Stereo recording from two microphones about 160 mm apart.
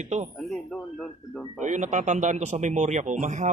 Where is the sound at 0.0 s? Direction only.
45° right (ahead or behind).